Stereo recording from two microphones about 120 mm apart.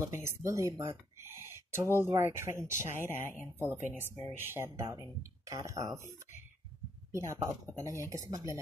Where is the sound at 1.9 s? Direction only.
20° right (ahead or behind).